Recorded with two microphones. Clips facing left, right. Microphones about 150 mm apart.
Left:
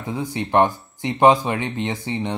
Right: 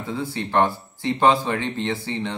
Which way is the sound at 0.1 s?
15° left (ahead or behind).